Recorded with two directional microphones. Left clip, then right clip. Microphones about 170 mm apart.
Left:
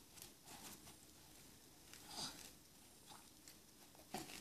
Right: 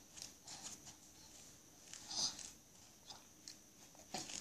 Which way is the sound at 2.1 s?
5° left (ahead or behind).